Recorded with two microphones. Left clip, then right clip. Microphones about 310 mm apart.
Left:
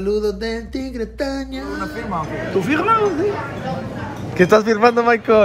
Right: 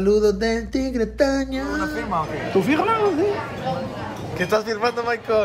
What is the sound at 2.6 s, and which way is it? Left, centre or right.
Speech, right.